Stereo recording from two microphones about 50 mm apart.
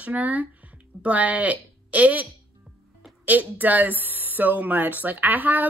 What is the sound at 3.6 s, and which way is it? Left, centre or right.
Speech, right.